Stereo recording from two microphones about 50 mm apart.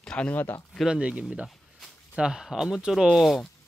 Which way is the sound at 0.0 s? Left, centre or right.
Centre.